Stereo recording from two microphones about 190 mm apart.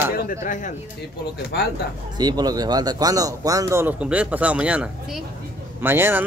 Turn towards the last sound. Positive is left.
turn(degrees=-10)  # may be behind; listen again after turning